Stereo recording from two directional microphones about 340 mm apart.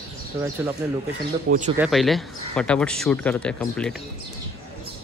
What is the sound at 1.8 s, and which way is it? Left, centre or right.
Speech, centre.